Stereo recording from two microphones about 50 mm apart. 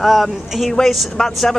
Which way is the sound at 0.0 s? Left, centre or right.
Centre.